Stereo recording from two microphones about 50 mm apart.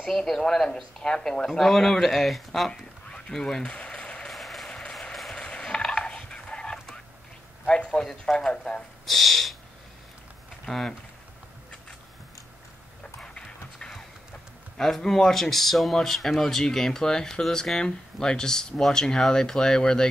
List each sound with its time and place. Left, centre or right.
0.0 s speech: centre
2.7 s a sound: centre
4.3 s music: centre
5.3 s creak: centre
5.6 s a sound: centre
7.8 s speech: centre
9.0 s a sound: centre
10.7 s speech: centre
13.0 s music: centre
14.8 s speech: centre